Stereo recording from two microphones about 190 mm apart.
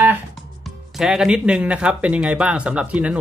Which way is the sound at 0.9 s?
5° right (ahead or behind).